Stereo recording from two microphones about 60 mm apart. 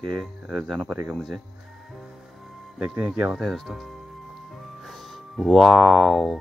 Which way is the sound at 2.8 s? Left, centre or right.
Right.